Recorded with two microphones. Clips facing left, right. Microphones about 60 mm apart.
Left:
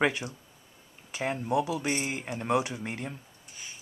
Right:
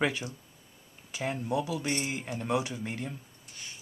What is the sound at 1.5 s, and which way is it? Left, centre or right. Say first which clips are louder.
A woman's voice: left 4 dB; centre.